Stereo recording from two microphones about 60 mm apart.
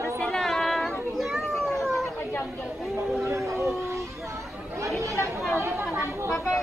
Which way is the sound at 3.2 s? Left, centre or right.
Right.